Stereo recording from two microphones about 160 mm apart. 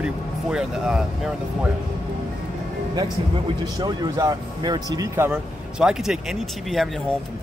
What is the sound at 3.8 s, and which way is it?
Speech, 25° right (ahead or behind).